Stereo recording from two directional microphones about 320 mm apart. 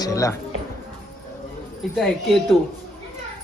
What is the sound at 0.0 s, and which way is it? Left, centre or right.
Speech, centre.